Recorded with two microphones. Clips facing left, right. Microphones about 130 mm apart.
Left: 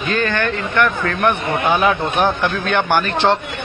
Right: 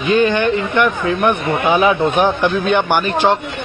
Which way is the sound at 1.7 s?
5° right (ahead or behind).